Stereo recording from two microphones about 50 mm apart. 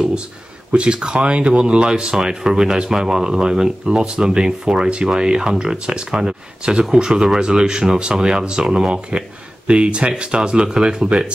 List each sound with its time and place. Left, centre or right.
0.7 s speech: right